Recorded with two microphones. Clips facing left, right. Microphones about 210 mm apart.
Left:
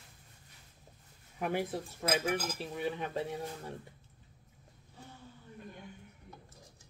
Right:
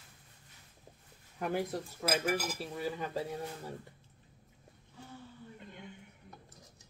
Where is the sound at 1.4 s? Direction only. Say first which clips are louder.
Even; centre (ahead or behind).